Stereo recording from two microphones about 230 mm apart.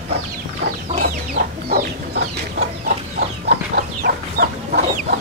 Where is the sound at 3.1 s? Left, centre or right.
Right.